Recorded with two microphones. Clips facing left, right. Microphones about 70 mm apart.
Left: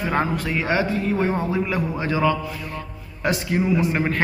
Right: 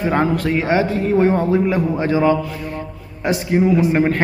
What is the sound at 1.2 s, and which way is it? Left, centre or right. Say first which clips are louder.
A man's voice: right 7 dB; right.